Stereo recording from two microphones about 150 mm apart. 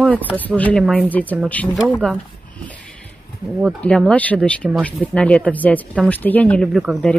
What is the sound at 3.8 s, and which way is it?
Speech, 5° left (ahead or behind).